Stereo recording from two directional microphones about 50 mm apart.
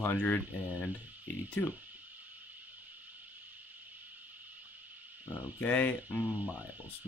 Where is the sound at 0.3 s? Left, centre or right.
Left.